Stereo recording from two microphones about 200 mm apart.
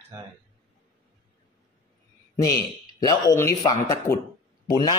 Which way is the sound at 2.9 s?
20° left (ahead or behind).